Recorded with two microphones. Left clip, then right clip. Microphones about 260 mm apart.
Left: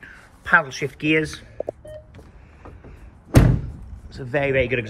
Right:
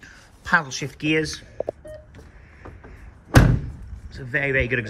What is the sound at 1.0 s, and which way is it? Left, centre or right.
Speech, centre.